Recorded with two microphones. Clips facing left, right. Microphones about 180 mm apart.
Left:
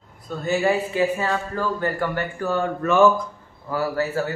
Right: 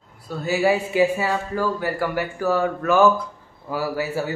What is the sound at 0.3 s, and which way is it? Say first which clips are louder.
Speech: right 1 dB; 5° right (ahead or behind).